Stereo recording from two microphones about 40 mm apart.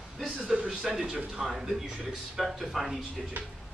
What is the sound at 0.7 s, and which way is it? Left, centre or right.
Speech, centre.